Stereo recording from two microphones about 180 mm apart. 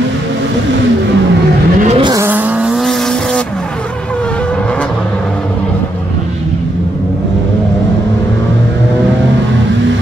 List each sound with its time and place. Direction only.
1.9 s vehicle: 25° right (ahead or behind)
2.2 s vehicle: 10° right (ahead or behind)